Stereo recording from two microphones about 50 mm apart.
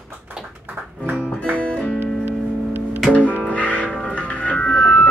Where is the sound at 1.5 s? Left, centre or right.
Left.